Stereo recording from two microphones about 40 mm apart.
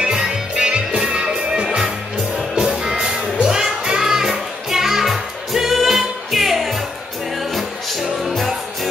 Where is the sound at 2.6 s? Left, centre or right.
Centre.